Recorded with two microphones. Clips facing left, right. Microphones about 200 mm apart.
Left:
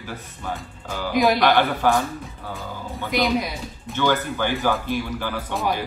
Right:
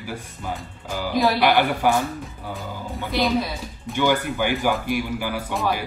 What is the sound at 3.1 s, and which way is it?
Speech, 15° left (ahead or behind).